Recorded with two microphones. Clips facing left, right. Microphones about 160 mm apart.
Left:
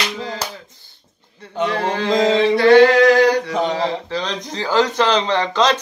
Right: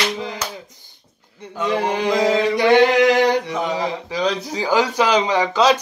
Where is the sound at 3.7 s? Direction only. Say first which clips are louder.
Left 2 dB; 15° right (ahead or behind).